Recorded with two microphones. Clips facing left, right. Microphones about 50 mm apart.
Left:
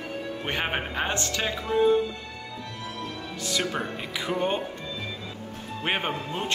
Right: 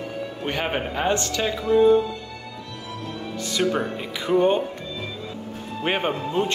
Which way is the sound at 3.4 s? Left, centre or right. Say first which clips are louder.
Right 5 dB; centre.